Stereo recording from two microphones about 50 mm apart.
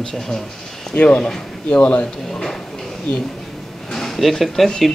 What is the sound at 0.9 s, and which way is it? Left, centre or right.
Speech, left.